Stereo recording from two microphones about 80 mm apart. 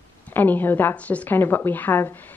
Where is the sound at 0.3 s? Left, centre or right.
Left.